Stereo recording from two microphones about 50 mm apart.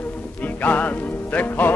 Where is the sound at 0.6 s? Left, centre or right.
Left.